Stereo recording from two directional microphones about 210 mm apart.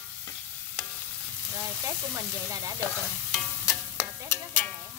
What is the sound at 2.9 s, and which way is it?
Stir, 5° left (ahead or behind).